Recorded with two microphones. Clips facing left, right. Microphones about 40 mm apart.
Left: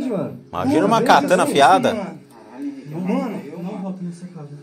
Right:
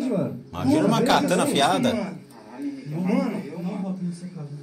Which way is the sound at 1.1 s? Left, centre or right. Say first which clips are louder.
Left 6 dB; left.